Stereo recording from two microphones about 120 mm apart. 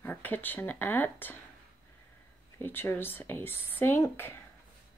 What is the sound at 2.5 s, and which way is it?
Speech, 20° left (ahead or behind).